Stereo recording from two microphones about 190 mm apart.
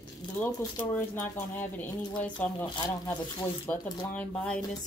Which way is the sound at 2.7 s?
20° left (ahead or behind).